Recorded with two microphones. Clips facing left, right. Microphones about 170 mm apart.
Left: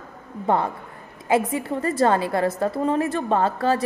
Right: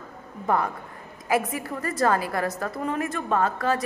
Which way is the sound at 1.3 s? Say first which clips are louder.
Left 4 dB; 25° left (ahead or behind).